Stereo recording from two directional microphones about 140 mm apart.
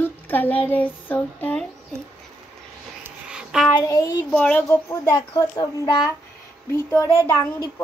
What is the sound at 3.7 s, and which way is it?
Speech, 25° left (ahead or behind).